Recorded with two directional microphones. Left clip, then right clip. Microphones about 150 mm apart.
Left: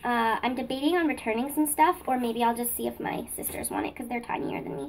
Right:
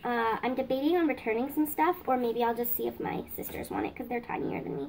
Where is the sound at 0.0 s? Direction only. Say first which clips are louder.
Left 3 dB; 10° left (ahead or behind).